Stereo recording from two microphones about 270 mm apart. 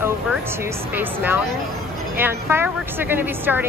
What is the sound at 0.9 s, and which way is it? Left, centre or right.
A woman's voice, centre.